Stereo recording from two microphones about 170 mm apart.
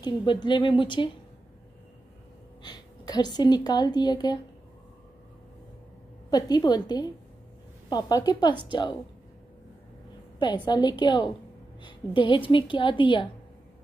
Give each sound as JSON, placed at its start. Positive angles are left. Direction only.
{"t": 0.0, "sound": "a woman's voice", "side_deg": 25}
{"t": 2.6, "sound": "a woman's voice", "side_deg": 25}
{"t": 6.3, "sound": "a woman's voice", "side_deg": 25}
{"t": 10.4, "sound": "a woman's voice", "side_deg": 25}